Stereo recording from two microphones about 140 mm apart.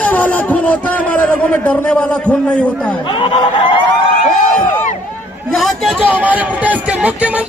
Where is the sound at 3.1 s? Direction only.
35° left (ahead or behind).